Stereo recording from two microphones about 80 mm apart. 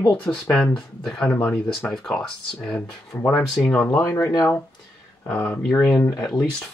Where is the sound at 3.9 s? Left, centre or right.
Left.